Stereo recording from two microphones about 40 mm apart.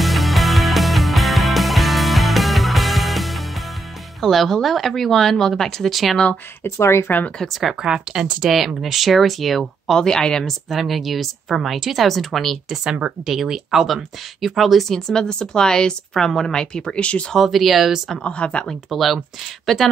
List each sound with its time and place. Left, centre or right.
0.0 s music: centre
4.2 s speech: centre
6.6 s speech: left
7.8 s speech: centre
10.4 s speech: centre
12.1 s speech: centre
13.2 s speech: centre
14.9 s speech: centre
17.4 s speech: centre
18.2 s speech: left
18.9 s speech: centre